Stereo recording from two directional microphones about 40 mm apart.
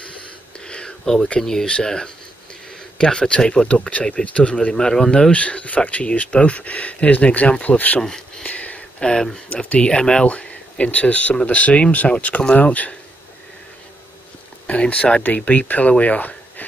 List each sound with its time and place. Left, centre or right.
0.7 s a sound: left
1.4 s speech: centre; by 4.7 s left
4.7 s speech: centre
5.3 s speech: left
8.0 s a sound: centre
8.5 s a sound: left
9.5 s speech: left
10.2 s speech: left
14.7 s speech: left
15.2 s speech: left